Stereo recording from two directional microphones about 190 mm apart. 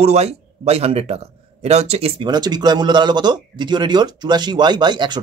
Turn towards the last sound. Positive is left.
turn(degrees=-25)  # may be behind; listen again after turning